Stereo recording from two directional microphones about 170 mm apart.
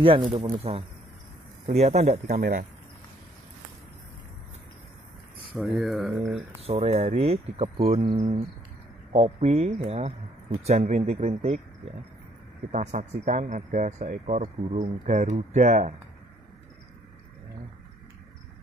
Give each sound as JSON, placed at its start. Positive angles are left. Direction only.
{"t": 0.0, "sound": "speech", "side_deg": -30}
{"t": 5.8, "sound": "speech", "side_deg": 0}
{"t": 6.6, "sound": "speech", "side_deg": -35}
{"t": 12.7, "sound": "a man's voice", "side_deg": -45}